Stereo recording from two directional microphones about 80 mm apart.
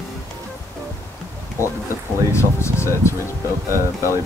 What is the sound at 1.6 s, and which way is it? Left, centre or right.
Speech, left.